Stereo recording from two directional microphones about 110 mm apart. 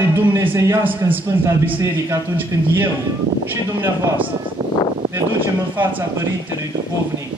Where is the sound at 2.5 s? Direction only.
30° right (ahead or behind).